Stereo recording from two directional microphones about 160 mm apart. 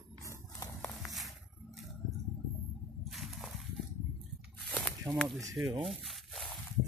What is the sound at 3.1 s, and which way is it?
Whip, centre (ahead or behind).